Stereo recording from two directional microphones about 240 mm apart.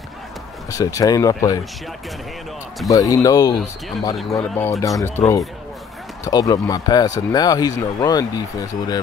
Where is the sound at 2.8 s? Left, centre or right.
Centre.